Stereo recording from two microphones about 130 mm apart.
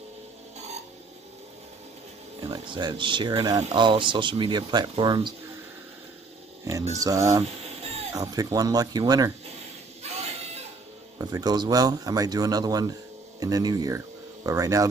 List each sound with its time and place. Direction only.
2.4 s speech: 35° right (ahead or behind)
6.9 s speech: 25° right (ahead or behind)
7.4 s a sound: 55° right (ahead or behind)
8.1 s speech: 25° right (ahead or behind)
11.1 s speech: 30° right (ahead or behind)